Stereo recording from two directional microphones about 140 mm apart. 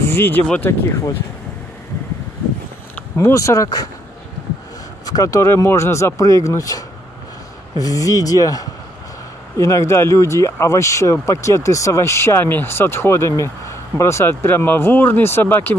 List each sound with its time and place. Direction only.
0.1 s speech: 15° left (ahead or behind)
3.2 s speech: 20° left (ahead or behind)
5.0 s speech: 25° left (ahead or behind)
7.8 s speech: 25° left (ahead or behind)